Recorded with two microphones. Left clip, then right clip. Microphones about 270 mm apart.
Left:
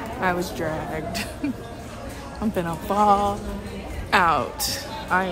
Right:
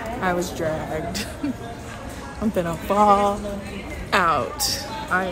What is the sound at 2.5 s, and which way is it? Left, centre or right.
Speech, centre.